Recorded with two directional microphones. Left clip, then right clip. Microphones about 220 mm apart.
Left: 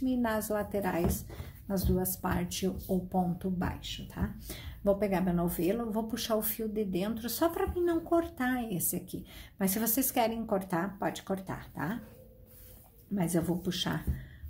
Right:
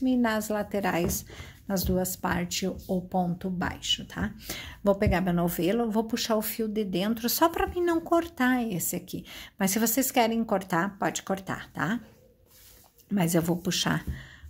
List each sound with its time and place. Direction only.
0.0 s a woman's voice: 30° right (ahead or behind)
13.1 s speech: 35° right (ahead or behind)